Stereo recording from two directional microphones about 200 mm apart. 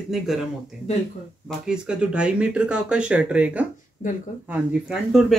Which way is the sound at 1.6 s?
5° right (ahead or behind).